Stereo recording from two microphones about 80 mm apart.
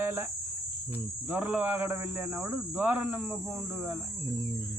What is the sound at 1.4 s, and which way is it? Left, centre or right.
Speech, right.